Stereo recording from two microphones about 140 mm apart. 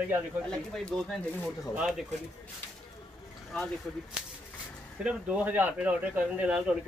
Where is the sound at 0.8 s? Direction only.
5° left (ahead or behind).